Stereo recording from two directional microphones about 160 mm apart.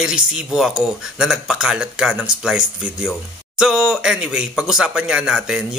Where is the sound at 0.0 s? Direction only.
5° right (ahead or behind).